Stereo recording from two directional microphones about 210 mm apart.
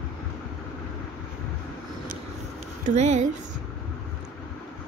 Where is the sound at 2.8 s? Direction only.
35° right (ahead or behind).